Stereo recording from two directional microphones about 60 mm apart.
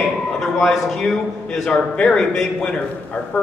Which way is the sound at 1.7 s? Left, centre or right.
Centre.